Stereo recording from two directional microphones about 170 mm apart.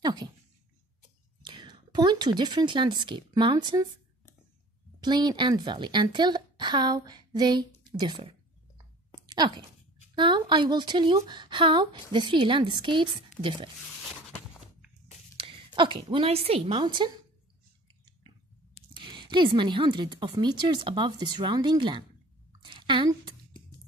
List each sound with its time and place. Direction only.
0.0 s speech: 25° right (ahead or behind)
1.4 s speech: 25° right (ahead or behind)
5.0 s speech: 25° right (ahead or behind)
9.4 s speech: 35° right (ahead or behind)
15.3 s a woman's voice: 30° right (ahead or behind)
18.9 s speech: 30° right (ahead or behind)